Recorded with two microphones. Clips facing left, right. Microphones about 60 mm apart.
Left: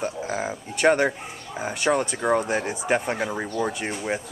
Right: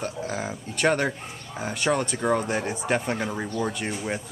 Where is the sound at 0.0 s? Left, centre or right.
Centre.